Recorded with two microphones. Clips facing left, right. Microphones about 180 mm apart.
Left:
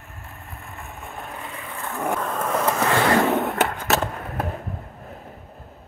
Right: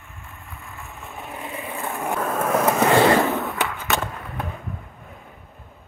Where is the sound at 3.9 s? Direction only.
40° left (ahead or behind).